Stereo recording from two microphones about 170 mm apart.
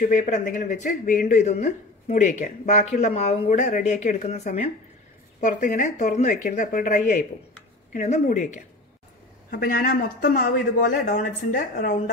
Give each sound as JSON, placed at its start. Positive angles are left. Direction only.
{"t": 0.0, "sound": "speech", "side_deg": 50}
{"t": 9.5, "sound": "speech", "side_deg": 60}